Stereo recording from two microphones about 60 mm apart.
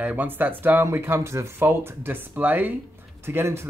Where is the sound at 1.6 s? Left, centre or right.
Right.